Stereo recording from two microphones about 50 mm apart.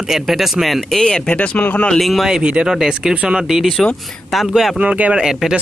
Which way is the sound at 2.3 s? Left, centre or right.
Right.